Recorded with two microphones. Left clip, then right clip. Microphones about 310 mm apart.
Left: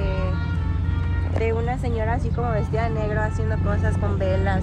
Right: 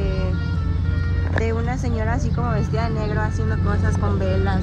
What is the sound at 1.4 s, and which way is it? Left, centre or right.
Speech, right.